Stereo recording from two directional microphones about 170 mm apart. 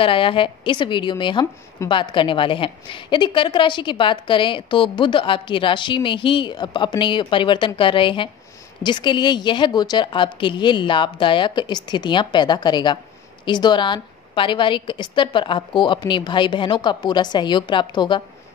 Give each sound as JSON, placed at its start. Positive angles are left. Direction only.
{"t": 0.0, "sound": "a woman's voice", "side_deg": 30}